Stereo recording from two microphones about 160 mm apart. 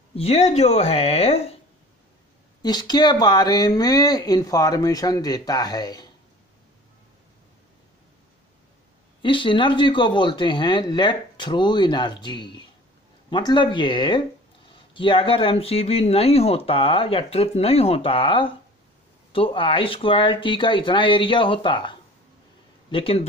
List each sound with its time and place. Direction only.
0.1 s speech: 40° left (ahead or behind)
2.6 s speech: 25° left (ahead or behind)
9.2 s speech: 30° left (ahead or behind)